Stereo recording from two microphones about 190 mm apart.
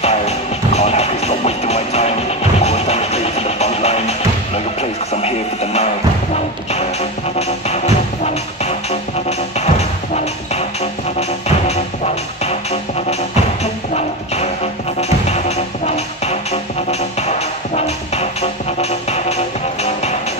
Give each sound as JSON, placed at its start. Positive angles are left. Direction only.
{"t": 0.0, "sound": "music", "side_deg": 35}
{"t": 5.1, "sound": "radio", "side_deg": 35}
{"t": 6.7, "sound": "music", "side_deg": 35}
{"t": 9.6, "sound": "music", "side_deg": 35}
{"t": 13.9, "sound": "music", "side_deg": 35}
{"t": 17.2, "sound": "music", "side_deg": 35}